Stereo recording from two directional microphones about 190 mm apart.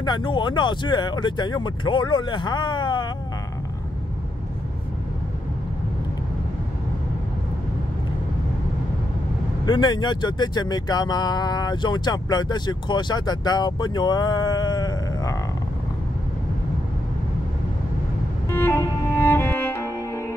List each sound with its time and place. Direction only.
0.0 s speech: 25° left (ahead or behind)
9.7 s speech: 20° left (ahead or behind)
18.5 s music: 10° left (ahead or behind)